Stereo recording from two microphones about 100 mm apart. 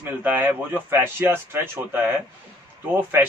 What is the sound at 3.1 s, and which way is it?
Speech, 25° right (ahead or behind).